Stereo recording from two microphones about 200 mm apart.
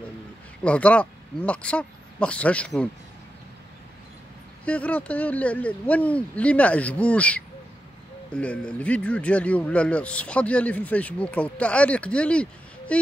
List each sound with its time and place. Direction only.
0.7 s speech: 5° left (ahead or behind)
4.6 s speech: 5° left (ahead or behind)